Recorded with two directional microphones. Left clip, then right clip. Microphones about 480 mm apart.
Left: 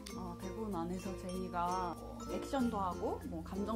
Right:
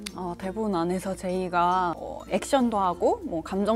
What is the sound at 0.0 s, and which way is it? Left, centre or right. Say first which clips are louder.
Speech: right 13 dB; right.